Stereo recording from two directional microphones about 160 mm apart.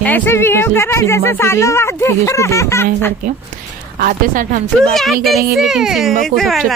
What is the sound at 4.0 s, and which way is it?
Speech, 65° right (ahead or behind).